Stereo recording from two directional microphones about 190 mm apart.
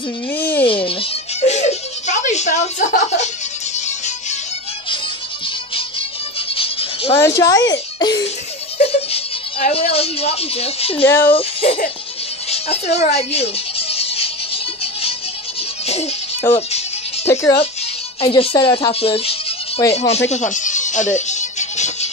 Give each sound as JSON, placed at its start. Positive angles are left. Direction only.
{"t": 0.3, "sound": "a sound", "side_deg": 10}
{"t": 0.7, "sound": "a woman's voice", "side_deg": 30}
{"t": 1.4, "sound": "chuckle", "side_deg": 35}
{"t": 3.7, "sound": "music", "side_deg": 35}
{"t": 6.5, "sound": "a sound", "side_deg": 30}
{"t": 7.2, "sound": "a woman's voice", "side_deg": 15}
{"t": 8.7, "sound": "speech", "side_deg": 30}
{"t": 11.1, "sound": "speech", "side_deg": 10}
{"t": 11.3, "sound": "a woman's voice", "side_deg": 30}
{"t": 12.4, "sound": "music", "side_deg": 35}
{"t": 17.3, "sound": "speech", "side_deg": 15}
{"t": 18.2, "sound": "a woman's voice", "side_deg": 30}
{"t": 20.2, "sound": "music", "side_deg": 40}